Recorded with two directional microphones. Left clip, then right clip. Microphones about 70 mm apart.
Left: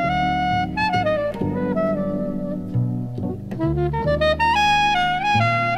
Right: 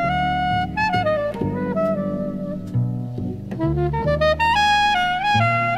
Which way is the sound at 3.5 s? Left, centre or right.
Centre.